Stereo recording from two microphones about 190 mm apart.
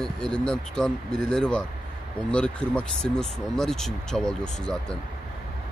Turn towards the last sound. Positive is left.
turn(degrees=5)  # may be behind; listen again after turning